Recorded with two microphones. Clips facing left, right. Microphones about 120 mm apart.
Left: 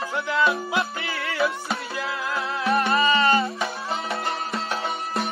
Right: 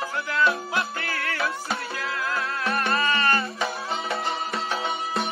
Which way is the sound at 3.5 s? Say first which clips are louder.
Even; centre (ahead or behind).